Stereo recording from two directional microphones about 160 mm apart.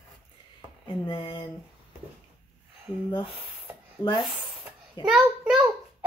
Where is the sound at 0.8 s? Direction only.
30° left (ahead or behind).